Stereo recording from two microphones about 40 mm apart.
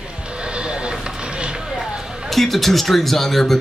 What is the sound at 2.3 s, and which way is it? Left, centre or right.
A man's voice, centre.